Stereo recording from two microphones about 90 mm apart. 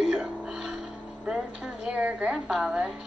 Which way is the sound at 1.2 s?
10° right (ahead or behind).